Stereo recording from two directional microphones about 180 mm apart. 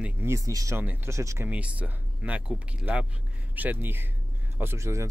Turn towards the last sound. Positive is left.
turn(degrees=-15)  # may be behind; listen again after turning